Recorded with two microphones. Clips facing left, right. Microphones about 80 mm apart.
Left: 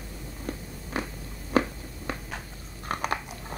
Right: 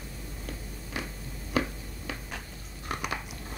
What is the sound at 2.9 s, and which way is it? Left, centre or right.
Biting, left.